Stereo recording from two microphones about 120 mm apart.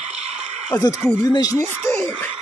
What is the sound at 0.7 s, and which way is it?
Speech, 30° left (ahead or behind).